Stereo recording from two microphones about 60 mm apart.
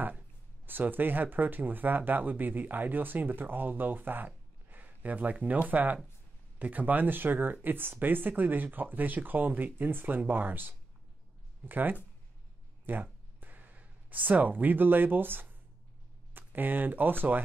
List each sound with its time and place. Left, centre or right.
0.7 s speech: right
12.8 s a sound: right
16.3 s speech: right